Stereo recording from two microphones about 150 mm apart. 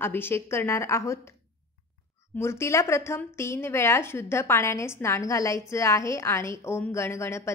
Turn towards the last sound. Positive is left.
turn(degrees=15)  # may be behind; listen again after turning